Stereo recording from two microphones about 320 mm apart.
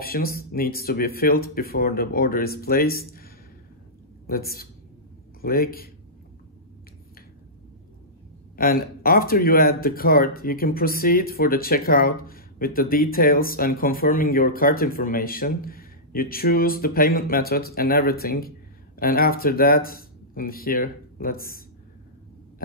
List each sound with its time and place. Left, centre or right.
0.0 s speech: left
4.3 s speech: left
8.5 s speech: left